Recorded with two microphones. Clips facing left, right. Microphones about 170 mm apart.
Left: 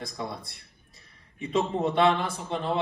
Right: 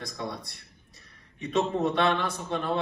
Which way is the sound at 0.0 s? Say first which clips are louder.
Even; 25° left (ahead or behind).